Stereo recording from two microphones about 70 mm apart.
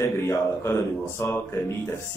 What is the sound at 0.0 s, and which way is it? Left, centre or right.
Speech, left.